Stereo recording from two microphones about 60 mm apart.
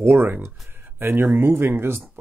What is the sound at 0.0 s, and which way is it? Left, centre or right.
Speech, right.